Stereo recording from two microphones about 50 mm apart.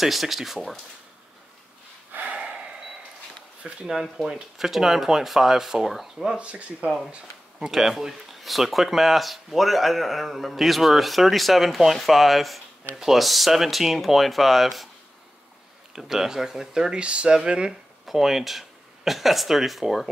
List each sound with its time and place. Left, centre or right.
0.0 s speech: centre
2.1 s a sound: right
3.8 s speech: centre
6.3 s speech: right
7.6 s speech: centre
15.9 s speech: centre
18.0 s speech: centre